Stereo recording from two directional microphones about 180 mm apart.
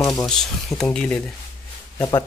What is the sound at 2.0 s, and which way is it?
Speech, 20° left (ahead or behind).